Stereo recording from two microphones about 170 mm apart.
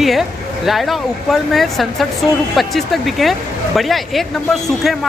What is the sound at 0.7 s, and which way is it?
Speech, centre (ahead or behind).